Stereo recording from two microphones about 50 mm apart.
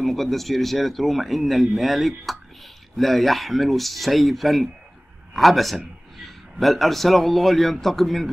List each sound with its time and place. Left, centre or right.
0.0 s a man's voice: centre